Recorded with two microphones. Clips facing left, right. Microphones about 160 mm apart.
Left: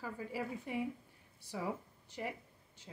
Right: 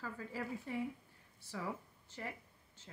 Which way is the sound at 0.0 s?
15° left (ahead or behind).